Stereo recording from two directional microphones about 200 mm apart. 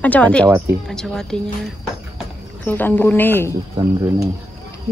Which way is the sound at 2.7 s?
10° left (ahead or behind).